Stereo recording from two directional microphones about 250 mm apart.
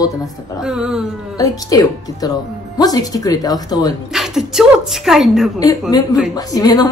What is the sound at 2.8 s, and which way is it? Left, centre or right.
Speech, centre.